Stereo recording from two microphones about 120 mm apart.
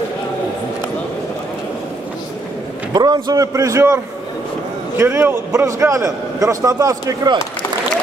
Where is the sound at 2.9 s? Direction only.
35° right (ahead or behind).